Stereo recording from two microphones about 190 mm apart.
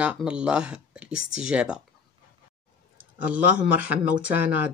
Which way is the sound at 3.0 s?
10° right (ahead or behind).